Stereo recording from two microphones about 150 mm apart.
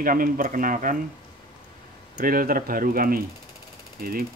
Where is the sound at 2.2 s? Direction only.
70° right (ahead or behind).